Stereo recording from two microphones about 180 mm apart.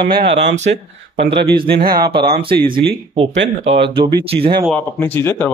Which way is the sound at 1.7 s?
55° right (ahead or behind).